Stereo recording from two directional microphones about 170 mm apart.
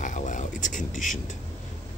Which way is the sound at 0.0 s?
45° left (ahead or behind).